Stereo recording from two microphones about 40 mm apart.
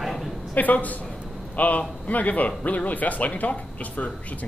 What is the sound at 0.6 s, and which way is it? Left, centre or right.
Speech, left.